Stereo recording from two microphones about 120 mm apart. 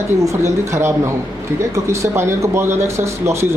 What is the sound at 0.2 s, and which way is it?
Speech, 25° right (ahead or behind).